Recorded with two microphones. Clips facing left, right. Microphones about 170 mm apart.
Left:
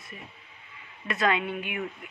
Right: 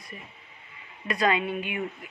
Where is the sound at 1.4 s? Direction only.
25° right (ahead or behind).